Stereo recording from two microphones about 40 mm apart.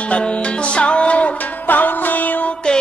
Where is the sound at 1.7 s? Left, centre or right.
Left.